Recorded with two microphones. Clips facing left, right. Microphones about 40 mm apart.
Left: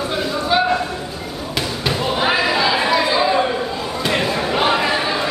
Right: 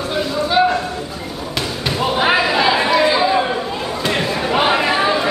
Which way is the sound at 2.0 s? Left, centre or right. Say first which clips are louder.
Right 3 dB; centre.